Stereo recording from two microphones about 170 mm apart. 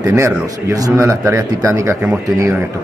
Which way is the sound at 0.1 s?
15° right (ahead or behind).